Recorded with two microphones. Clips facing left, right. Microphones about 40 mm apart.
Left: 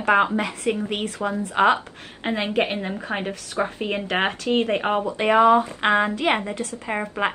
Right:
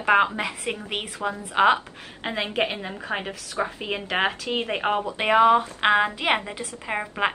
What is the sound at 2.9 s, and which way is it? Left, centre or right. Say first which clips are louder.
Speech: left 2 dB; centre.